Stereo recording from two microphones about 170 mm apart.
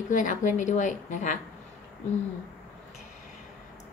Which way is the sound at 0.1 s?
50° left (ahead or behind).